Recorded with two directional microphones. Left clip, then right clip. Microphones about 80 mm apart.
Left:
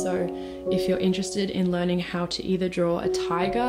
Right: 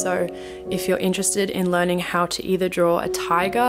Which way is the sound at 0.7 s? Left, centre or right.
Right.